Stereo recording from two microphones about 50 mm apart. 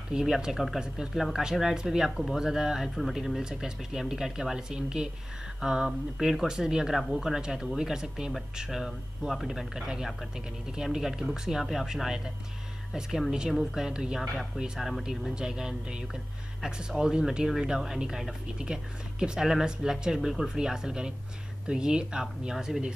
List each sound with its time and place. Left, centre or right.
0.2 s speech: centre
3.0 s speech: centre
13.5 s speech: centre
14.8 s speech: centre
15.3 s speech: centre